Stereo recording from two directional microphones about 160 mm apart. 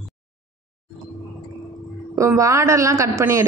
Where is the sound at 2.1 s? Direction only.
20° right (ahead or behind).